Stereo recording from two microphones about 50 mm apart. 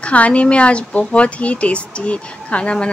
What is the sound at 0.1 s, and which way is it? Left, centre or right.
Speech, left.